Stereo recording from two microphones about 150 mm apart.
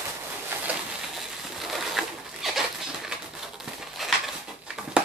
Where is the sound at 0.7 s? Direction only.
Centre (ahead or behind).